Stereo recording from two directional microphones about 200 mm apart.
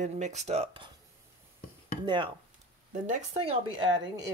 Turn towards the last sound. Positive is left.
turn(degrees=-20)  # may be behind; listen again after turning